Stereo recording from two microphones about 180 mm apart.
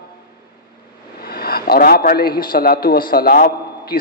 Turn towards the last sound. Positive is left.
turn(degrees=55)  # may be behind; listen again after turning